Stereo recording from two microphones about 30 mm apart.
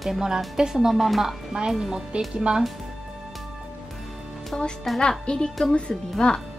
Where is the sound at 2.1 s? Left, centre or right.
Right.